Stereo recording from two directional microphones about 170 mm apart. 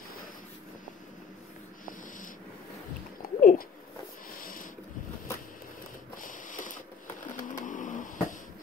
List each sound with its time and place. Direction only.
3.2 s a sound: 55° left (ahead or behind)
6.2 s mechanisms: 50° left (ahead or behind)
7.3 s vehicle: 50° left (ahead or behind)